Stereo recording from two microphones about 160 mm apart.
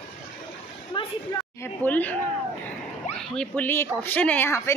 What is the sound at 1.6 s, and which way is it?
Speech, 10° left (ahead or behind).